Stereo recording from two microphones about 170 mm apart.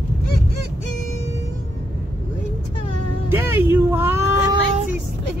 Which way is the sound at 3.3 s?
15° right (ahead or behind).